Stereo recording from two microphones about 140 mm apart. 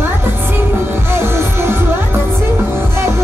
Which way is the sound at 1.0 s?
15° right (ahead or behind).